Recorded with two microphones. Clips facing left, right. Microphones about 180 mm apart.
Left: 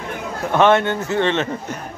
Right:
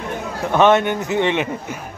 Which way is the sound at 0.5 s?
15° right (ahead or behind).